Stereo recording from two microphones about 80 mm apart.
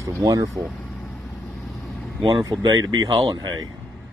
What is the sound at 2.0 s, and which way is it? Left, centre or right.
Vehicle, centre.